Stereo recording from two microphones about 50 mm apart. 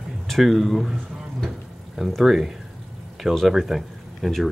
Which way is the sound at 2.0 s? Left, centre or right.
Centre.